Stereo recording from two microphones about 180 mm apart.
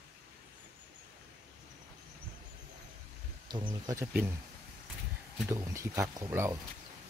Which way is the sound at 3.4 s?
25° right (ahead or behind).